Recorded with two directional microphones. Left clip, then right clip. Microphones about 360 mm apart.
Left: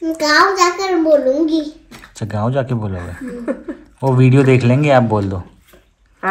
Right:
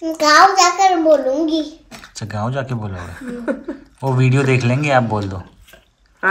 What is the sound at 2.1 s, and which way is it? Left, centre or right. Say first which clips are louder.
Speech: left 4 dB; centre.